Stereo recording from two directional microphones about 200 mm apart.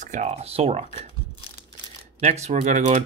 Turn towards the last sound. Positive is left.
turn(degrees=-35)  # may be behind; listen again after turning